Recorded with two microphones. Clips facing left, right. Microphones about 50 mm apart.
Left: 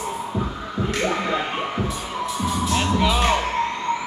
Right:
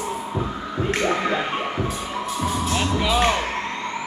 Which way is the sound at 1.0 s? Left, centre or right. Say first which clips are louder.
Right 1 dB; centre.